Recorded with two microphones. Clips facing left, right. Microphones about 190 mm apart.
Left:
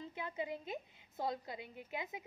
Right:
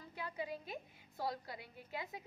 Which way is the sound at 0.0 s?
20° left (ahead or behind).